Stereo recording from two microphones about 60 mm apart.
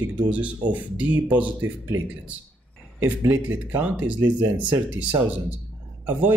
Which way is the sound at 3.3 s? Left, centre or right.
Right.